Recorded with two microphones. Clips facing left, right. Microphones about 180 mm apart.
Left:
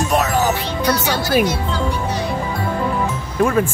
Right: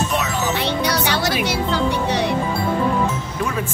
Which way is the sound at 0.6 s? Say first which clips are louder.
Left 1 dB; 70° right (ahead or behind).